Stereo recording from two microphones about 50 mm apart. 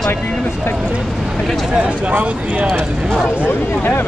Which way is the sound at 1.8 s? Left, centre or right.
Right.